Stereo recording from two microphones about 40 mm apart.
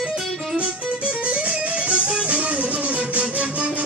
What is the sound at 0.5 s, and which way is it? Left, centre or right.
Music, right.